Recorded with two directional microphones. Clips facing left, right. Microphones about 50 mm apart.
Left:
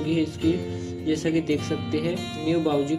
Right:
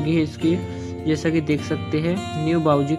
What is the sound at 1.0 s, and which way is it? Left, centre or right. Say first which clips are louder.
Speech: right 3 dB; right.